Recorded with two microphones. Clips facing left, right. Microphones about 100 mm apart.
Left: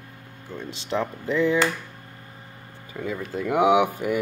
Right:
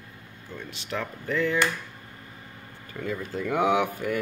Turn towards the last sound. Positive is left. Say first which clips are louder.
# left 4 dB
turn(degrees=10)  # may be behind; listen again after turning